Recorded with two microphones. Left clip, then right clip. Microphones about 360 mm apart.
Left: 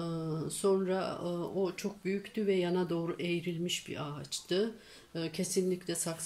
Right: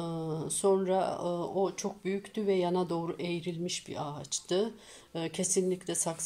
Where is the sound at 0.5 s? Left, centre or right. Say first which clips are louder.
Right 3 dB; centre.